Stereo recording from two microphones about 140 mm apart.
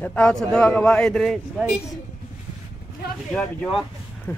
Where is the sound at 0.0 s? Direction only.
10° left (ahead or behind).